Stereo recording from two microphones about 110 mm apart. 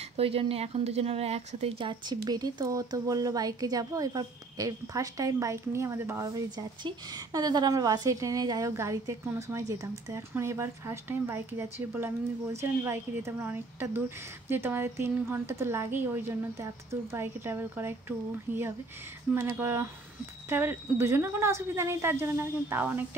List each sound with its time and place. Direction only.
0.2 s a woman's voice: 60° right (ahead or behind)
1.9 s speech: 40° right (ahead or behind); by 23.0 s 20° right (ahead or behind)